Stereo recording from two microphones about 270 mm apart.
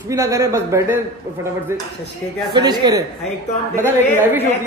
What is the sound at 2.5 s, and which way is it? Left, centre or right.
Speech, centre.